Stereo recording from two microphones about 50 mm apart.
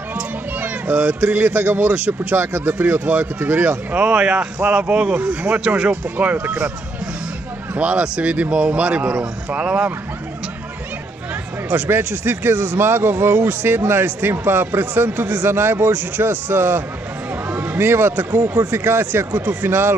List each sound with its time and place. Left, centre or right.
0.1 s music: right
2.3 s speech: right
2.8 s speech: right
3.9 s a man's voice: right
7.7 s a man's voice: right
11.7 s speech: right
17.5 s a sound: right
17.7 s speech: right